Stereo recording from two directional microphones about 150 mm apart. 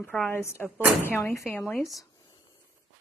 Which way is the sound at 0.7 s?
10° right (ahead or behind).